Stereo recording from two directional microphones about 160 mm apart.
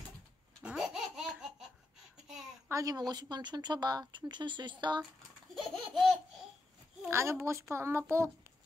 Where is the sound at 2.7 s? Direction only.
20° right (ahead or behind).